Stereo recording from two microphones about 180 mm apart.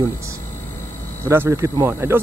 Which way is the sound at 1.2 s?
15° right (ahead or behind).